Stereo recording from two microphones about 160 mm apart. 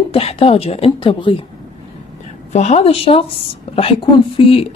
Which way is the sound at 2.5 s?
45° left (ahead or behind).